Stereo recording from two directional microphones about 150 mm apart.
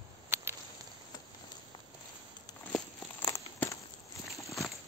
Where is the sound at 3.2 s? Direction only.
20° left (ahead or behind).